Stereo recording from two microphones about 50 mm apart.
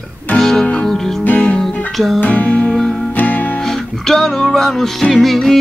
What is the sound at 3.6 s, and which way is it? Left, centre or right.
Music, centre.